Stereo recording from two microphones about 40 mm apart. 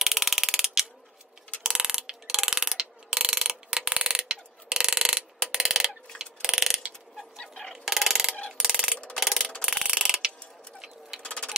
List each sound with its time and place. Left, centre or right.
0.0 s mechanisms: centre
1.6 s ratchet: centre
6.1 s mechanisms: centre
7.2 s bird: centre
7.7 s chicken: centre
8.5 s ratchet: centre
9.1 s a sound: centre
9.6 s clock: centre
11.2 s bird: left